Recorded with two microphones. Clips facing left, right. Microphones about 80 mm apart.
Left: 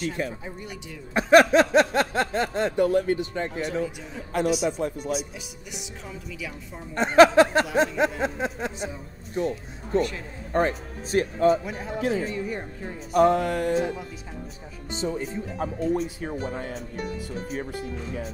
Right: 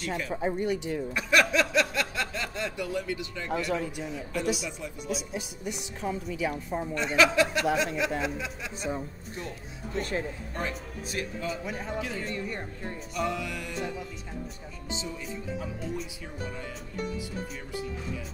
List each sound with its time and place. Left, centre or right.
0.3 s speech: right
1.1 s a sound: left
4.1 s speech: left
6.0 s speech: right
6.9 s a sound: left
9.9 s a sound: left
10.5 s speech: left
11.6 s a man's voice: centre
13.1 s speech: left